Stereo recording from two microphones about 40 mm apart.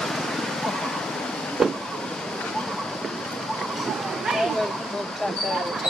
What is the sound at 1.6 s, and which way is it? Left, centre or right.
Vehicle, centre.